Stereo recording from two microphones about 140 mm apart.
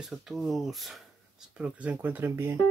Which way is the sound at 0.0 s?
Centre (ahead or behind).